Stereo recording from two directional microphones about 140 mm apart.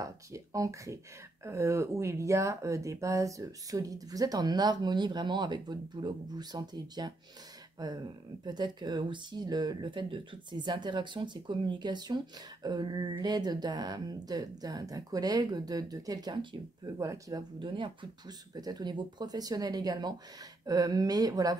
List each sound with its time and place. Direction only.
0.0 s speech: 25° right (ahead or behind)